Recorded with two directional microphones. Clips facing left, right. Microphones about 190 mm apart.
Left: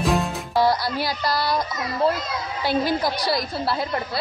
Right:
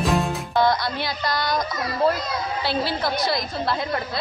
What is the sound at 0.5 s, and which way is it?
Music, 35° left (ahead or behind).